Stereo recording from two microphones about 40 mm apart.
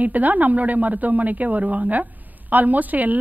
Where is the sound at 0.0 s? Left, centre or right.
Right.